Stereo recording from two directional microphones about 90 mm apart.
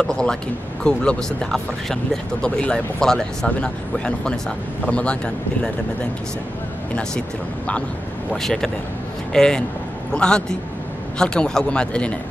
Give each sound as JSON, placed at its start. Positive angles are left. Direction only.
{"t": 0.0, "sound": "speech", "side_deg": 5}
{"t": 7.0, "sound": "speech", "side_deg": 10}